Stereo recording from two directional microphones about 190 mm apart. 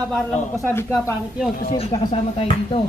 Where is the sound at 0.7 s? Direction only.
15° left (ahead or behind).